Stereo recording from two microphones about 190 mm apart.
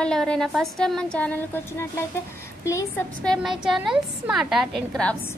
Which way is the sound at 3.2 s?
Centre (ahead or behind).